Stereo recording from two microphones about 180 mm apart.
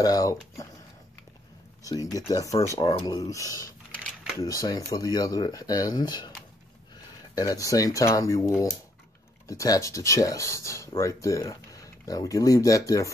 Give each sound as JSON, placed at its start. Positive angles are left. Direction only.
{"t": 0.0, "sound": "speech", "side_deg": 20}
{"t": 1.8, "sound": "speech", "side_deg": 20}
{"t": 3.9, "sound": "typewriter", "side_deg": 0}
{"t": 4.4, "sound": "speech", "side_deg": 20}
{"t": 7.3, "sound": "speech", "side_deg": 20}